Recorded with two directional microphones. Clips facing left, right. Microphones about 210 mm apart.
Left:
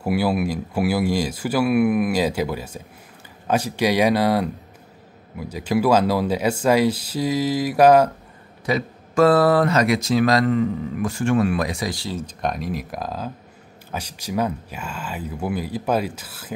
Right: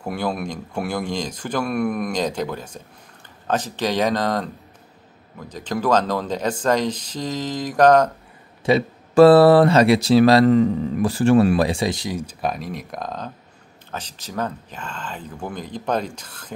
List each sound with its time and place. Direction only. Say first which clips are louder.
0.0 s speech: left 4 dB; 5° left (ahead or behind)
8.6 s speech: right 5 dB; 30° right (ahead or behind); by 16.5 s 5° left (ahead or behind)